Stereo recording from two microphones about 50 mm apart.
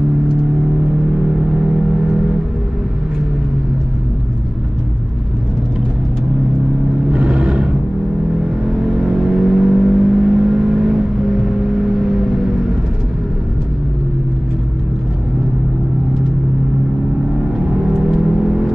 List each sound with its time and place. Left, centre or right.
7.1 s vehicle: right
8.6 s vehicle: centre
17.7 s vehicle: centre